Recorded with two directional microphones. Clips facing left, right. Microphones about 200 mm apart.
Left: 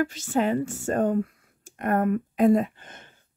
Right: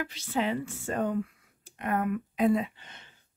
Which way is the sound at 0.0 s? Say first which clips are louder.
Left 6 dB; 45° left (ahead or behind).